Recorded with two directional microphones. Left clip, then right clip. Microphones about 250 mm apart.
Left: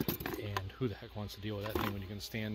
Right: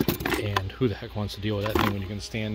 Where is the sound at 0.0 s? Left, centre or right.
Centre.